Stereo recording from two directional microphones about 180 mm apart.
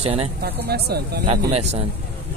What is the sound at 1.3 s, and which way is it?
Speech, 35° right (ahead or behind).